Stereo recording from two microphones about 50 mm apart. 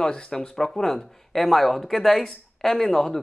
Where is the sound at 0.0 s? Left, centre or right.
Centre.